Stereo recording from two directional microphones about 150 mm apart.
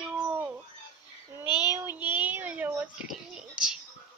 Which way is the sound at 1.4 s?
30° left (ahead or behind).